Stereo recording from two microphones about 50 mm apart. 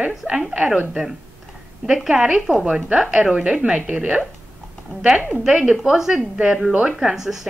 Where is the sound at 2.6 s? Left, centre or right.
Right.